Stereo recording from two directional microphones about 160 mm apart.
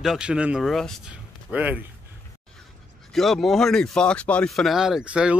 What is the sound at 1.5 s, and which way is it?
Speech, 10° right (ahead or behind).